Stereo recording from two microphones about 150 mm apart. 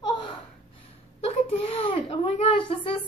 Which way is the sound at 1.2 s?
40° left (ahead or behind).